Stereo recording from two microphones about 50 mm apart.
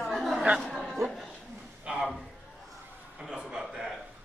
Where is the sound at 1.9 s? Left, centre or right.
Right.